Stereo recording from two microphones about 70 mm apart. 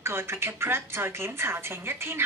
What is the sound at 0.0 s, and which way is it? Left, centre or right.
A woman's voice, right.